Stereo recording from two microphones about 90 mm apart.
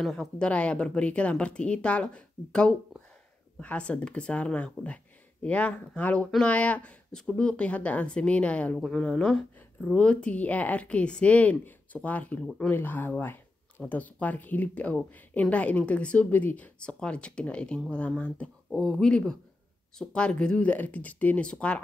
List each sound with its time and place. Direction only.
0.0 s a woman's voice: 5° left (ahead or behind)
8.7 s a woman's voice: 5° left (ahead or behind)
12.7 s a woman's voice: 20° left (ahead or behind)